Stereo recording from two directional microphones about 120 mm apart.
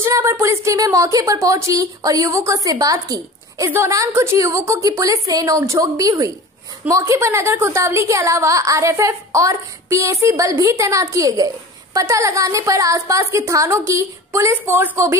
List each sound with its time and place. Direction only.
0.0 s a woman's voice: 25° right (ahead or behind)